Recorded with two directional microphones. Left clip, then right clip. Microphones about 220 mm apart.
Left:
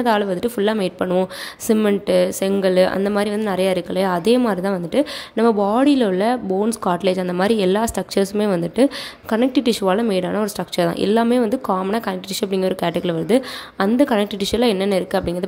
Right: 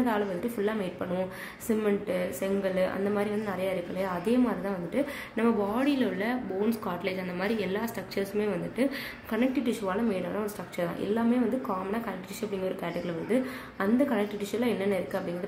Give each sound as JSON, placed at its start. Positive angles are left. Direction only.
{"t": 0.0, "sound": "a woman's voice", "side_deg": 40}